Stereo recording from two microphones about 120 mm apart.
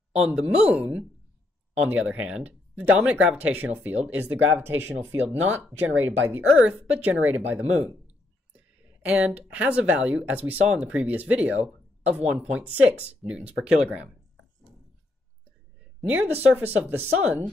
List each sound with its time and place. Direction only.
0.2 s speech: 10° right (ahead or behind)
16.0 s speech: 10° right (ahead or behind)